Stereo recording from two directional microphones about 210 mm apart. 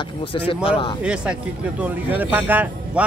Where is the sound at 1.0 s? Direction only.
5° right (ahead or behind).